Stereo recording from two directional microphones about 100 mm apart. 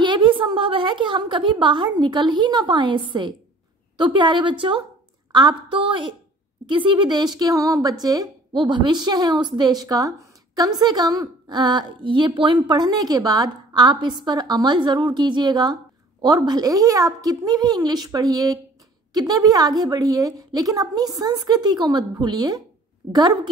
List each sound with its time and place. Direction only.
0.0 s a woman's voice: 55° right (ahead or behind)
8.5 s a woman's voice: 50° right (ahead or behind)
12.5 s a woman's voice: 45° right (ahead or behind)